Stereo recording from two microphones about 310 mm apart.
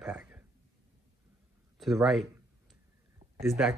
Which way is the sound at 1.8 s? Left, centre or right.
Centre.